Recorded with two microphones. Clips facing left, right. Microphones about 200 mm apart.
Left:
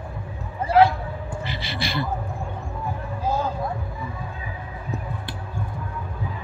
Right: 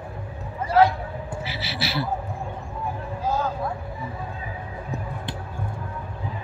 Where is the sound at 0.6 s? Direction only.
30° left (ahead or behind).